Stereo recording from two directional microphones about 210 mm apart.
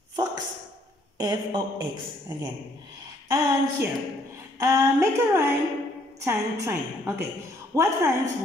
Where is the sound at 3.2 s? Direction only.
15° right (ahead or behind).